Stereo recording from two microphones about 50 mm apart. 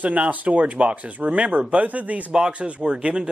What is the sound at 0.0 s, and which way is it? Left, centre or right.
Speech, right.